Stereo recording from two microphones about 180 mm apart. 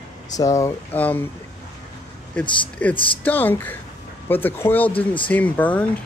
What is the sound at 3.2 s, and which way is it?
A man's voice, 10° left (ahead or behind).